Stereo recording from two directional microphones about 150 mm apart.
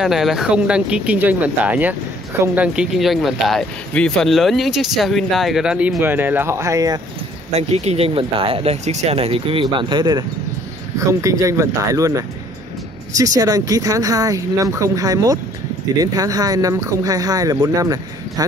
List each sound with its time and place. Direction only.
0.0 s speech: centre (ahead or behind); by 7.0 s 20° right (ahead or behind)
7.5 s speech: 45° right (ahead or behind); by 18.4 s 25° right (ahead or behind)